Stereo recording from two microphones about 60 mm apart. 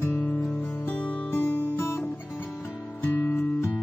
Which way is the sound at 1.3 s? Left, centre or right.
Left.